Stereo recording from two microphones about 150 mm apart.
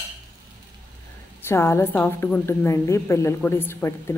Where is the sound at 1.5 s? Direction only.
15° left (ahead or behind).